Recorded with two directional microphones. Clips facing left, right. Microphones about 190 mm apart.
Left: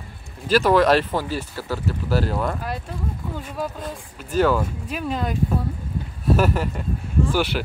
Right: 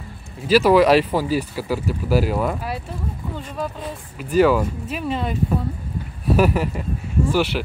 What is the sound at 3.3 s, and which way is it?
Speech, 5° left (ahead or behind).